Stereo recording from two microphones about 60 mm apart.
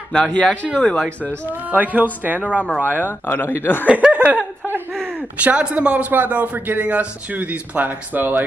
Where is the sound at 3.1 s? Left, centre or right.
Left.